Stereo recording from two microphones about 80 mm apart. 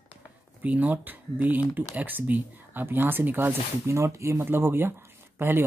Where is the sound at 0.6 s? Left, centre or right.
Right.